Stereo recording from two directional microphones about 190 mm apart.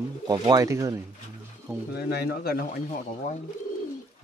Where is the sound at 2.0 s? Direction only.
55° left (ahead or behind).